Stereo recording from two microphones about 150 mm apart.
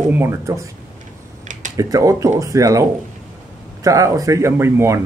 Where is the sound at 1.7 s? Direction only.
20° right (ahead or behind).